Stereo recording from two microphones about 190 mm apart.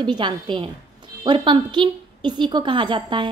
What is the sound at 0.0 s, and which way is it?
A woman's voice, 25° right (ahead or behind).